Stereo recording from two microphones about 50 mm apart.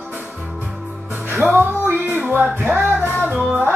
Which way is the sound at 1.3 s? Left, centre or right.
Right.